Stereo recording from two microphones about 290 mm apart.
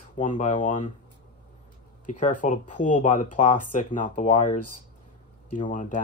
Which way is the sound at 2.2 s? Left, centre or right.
Left.